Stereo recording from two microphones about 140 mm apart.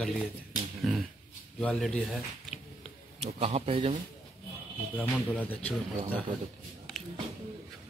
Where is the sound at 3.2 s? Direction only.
45° right (ahead or behind).